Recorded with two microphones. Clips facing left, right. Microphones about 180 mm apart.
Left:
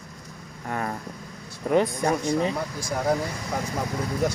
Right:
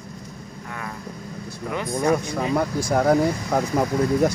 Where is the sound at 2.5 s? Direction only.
60° right (ahead or behind).